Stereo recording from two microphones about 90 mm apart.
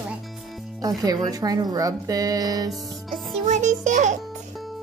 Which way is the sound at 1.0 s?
45° right (ahead or behind).